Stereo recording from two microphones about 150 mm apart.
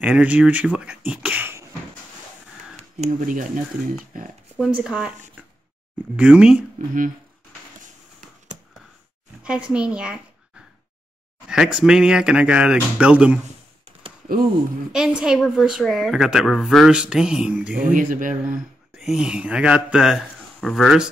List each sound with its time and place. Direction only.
0.0 s speech: 10° right (ahead or behind)
3.0 s speech: 60° right (ahead or behind)
4.6 s speech: 5° right (ahead or behind)
6.1 s speech: 10° right (ahead or behind)
9.4 s speech: 5° right (ahead or behind)
11.4 s speech: 5° right (ahead or behind)
14.9 s speech: 5° right (ahead or behind)
17.9 s speech: 60° right (ahead or behind)
18.3 s speech: 5° right (ahead or behind)